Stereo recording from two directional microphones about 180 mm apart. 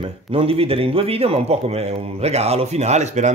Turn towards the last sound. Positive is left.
turn(degrees=-40)  # may be behind; listen again after turning